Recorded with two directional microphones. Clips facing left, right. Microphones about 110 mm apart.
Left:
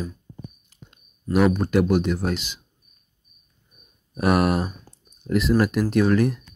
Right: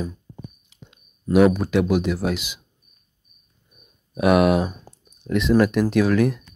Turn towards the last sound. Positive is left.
turn(degrees=0)  # may be behind; listen again after turning